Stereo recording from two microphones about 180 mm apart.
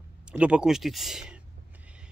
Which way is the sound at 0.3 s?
5° right (ahead or behind).